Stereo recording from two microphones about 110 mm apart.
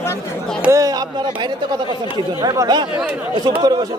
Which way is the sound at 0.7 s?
35° right (ahead or behind).